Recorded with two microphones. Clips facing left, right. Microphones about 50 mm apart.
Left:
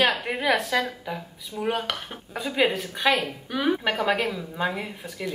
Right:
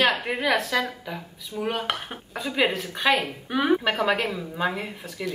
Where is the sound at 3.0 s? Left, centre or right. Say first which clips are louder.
Even; centre.